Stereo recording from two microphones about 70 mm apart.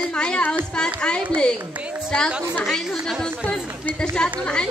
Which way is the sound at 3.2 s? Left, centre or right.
Centre.